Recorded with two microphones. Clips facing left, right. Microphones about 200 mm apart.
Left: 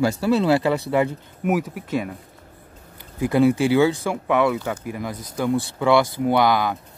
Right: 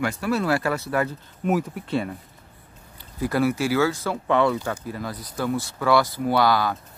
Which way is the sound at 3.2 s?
20° left (ahead or behind).